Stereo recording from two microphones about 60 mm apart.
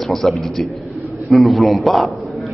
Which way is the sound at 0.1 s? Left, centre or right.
Centre.